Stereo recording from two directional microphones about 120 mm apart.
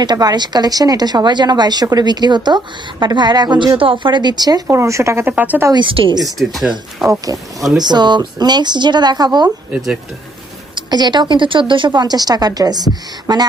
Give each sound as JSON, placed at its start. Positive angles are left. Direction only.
{"t": 0.0, "sound": "a woman's voice", "side_deg": -35}
{"t": 5.7, "sound": "a woman's voice", "side_deg": -45}
{"t": 6.2, "sound": "speech", "side_deg": 0}
{"t": 7.8, "sound": "a woman's voice", "side_deg": -35}
{"t": 10.7, "sound": "a woman's voice", "side_deg": -35}